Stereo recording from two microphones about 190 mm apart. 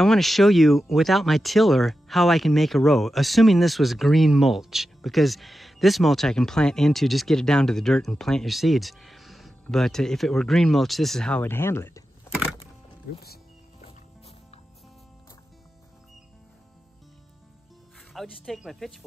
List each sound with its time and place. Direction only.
0.0 s speech: centre (ahead or behind)
13.7 s music: 35° left (ahead or behind)
18.1 s speech: centre (ahead or behind)